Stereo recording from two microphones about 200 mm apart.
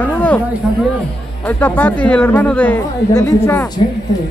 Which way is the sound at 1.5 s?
10° left (ahead or behind).